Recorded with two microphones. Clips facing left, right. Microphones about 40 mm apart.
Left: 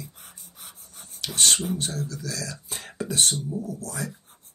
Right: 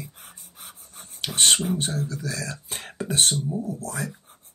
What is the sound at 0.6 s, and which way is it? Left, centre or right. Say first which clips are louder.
Pant: right 2 dB; right.